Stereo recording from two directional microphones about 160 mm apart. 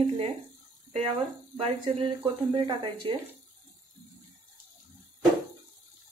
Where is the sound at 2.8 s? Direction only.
35° right (ahead or behind).